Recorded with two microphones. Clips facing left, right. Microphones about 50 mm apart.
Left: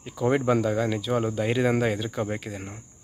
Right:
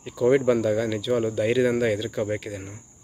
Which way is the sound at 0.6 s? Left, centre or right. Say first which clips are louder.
Right 1 dB; left.